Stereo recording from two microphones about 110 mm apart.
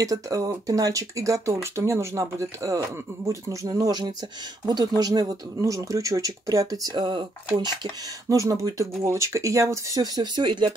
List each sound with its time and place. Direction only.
0.0 s speech: 30° right (ahead or behind)